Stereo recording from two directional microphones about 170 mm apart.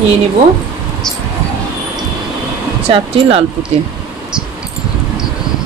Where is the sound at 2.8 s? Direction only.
35° right (ahead or behind).